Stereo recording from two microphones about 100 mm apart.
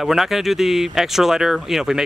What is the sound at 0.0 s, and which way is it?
Speech, centre (ahead or behind).